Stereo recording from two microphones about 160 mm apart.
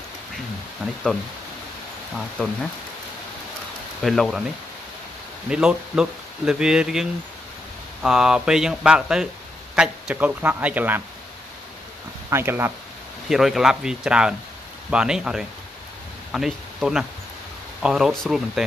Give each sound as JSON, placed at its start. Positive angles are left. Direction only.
{"t": 2.1, "sound": "speech", "side_deg": 0}
{"t": 4.0, "sound": "speech", "side_deg": 0}
{"t": 5.5, "sound": "speech", "side_deg": -5}
{"t": 12.3, "sound": "speech", "side_deg": -15}
{"t": 13.3, "sound": "speech", "side_deg": 0}